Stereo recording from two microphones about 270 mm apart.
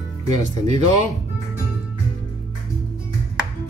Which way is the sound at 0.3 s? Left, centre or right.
Right.